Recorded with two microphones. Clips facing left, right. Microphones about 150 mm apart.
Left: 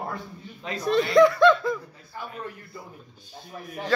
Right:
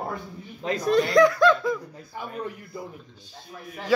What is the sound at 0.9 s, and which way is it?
Speech, centre (ahead or behind).